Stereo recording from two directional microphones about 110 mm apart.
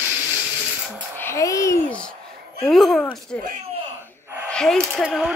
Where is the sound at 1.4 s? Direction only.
30° left (ahead or behind).